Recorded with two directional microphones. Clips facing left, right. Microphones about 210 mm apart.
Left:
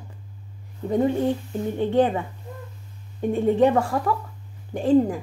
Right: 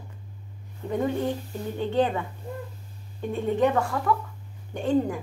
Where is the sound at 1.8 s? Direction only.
35° left (ahead or behind).